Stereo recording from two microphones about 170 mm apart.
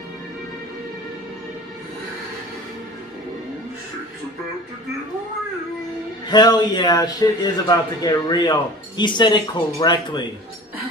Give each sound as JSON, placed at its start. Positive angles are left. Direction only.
{"t": 6.2, "sound": "speech", "side_deg": 25}